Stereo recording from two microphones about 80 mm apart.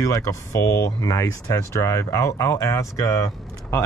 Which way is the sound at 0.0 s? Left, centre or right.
Left.